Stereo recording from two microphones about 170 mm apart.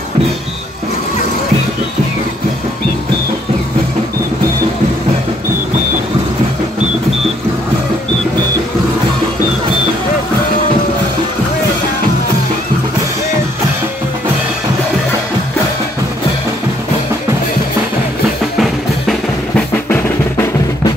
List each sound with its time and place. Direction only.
18.6 s drum: centre (ahead or behind)
19.9 s drum: 10° left (ahead or behind)